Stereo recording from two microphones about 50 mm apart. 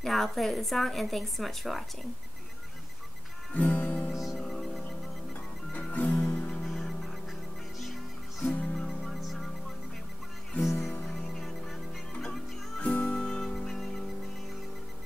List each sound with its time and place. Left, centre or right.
0.0 s speech: centre
3.5 s music: left
4.1 s music: centre
4.4 s music: centre
5.7 s music: left
6.6 s music: centre
10.6 s music: centre
12.1 s music: centre
13.2 s music: centre